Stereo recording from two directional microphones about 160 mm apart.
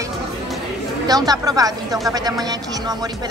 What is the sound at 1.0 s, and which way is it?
Speech, 25° right (ahead or behind).